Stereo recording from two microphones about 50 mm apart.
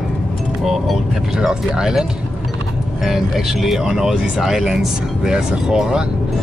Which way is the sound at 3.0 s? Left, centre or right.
Centre.